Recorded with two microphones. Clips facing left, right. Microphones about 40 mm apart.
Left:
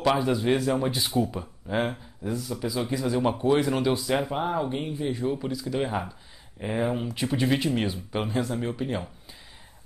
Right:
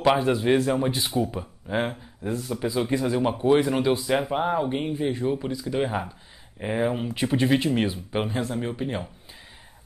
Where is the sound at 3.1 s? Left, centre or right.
Centre.